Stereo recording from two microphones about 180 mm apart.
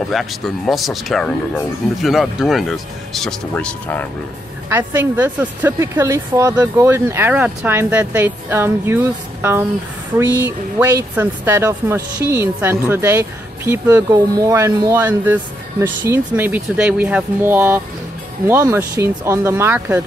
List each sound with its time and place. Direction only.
0.1 s speech: centre (ahead or behind)
4.6 s speech: 10° right (ahead or behind)